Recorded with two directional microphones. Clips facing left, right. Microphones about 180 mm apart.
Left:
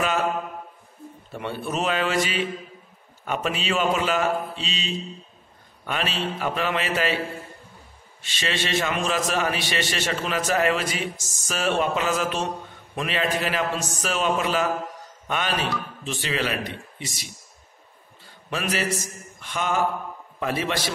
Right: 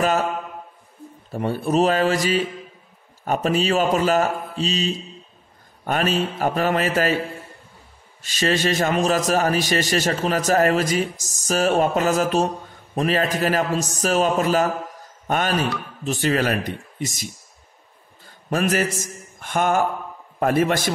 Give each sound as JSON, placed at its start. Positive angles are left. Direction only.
{"t": 0.0, "sound": "a sound", "side_deg": -40}
{"t": 1.3, "sound": "a man's voice", "side_deg": -40}
{"t": 8.2, "sound": "a man's voice", "side_deg": -40}
{"t": 18.5, "sound": "a man's voice", "side_deg": -45}